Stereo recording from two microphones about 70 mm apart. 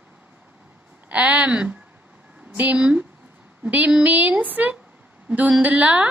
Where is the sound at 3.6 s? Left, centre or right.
Centre.